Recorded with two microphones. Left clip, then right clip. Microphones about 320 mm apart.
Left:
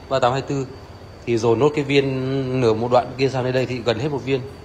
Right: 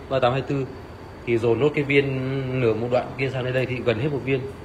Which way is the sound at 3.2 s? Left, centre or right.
Left.